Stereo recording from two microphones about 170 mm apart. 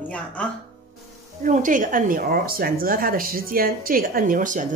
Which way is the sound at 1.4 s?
50° right (ahead or behind).